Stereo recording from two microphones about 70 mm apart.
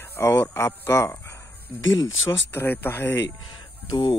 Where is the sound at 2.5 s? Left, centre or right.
Left.